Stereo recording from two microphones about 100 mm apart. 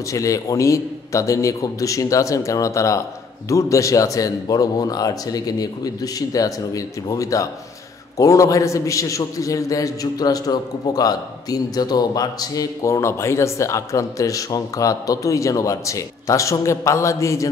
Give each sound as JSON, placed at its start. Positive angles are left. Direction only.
{"t": 0.1, "sound": "a man's voice", "side_deg": 35}